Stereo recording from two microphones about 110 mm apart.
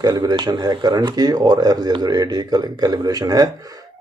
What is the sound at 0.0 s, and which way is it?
Speech, 35° right (ahead or behind).